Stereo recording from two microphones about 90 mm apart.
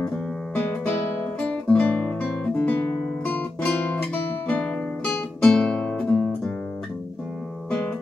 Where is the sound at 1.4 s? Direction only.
15° left (ahead or behind).